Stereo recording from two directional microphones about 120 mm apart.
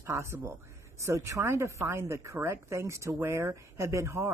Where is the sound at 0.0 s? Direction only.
20° right (ahead or behind).